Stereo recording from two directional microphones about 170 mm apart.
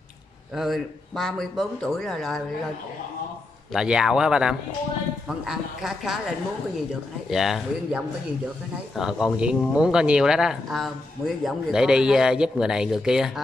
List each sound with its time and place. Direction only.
0.6 s speech: centre (ahead or behind)
3.7 s speech: 5° right (ahead or behind)
7.2 s speech: centre (ahead or behind)